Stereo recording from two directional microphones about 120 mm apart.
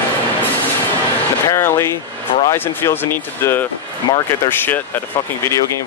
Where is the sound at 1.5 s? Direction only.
25° left (ahead or behind).